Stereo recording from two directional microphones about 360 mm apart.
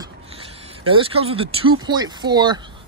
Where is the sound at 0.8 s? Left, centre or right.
Centre.